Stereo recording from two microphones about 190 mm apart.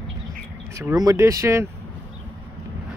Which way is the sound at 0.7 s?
15° right (ahead or behind).